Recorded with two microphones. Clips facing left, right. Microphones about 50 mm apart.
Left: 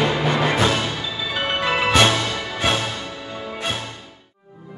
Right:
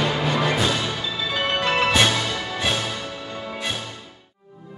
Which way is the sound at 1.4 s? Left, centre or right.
Centre.